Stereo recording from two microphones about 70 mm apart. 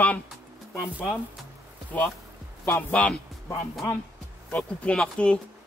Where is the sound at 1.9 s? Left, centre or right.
Centre.